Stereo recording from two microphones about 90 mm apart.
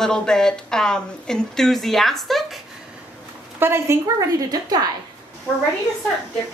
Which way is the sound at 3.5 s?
25° right (ahead or behind).